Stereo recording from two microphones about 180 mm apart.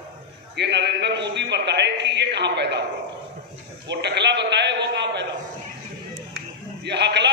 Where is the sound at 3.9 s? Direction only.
70° right (ahead or behind).